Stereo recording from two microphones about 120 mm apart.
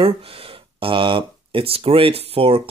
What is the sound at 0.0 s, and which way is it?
Speech, 50° right (ahead or behind).